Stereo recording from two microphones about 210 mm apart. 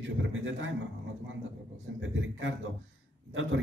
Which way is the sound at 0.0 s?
65° right (ahead or behind).